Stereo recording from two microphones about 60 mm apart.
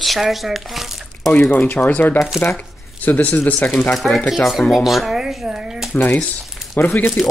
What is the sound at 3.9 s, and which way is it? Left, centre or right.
A child's voice, centre.